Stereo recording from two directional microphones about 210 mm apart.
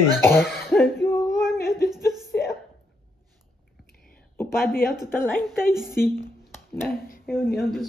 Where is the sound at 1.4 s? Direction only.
Centre (ahead or behind).